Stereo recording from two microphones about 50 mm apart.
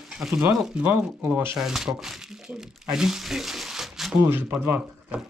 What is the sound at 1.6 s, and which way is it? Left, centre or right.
Speech, centre.